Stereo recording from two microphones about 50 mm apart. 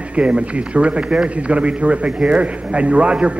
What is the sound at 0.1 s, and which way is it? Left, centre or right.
A man's voice, right.